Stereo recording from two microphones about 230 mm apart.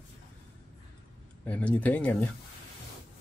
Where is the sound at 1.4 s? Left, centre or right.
Centre.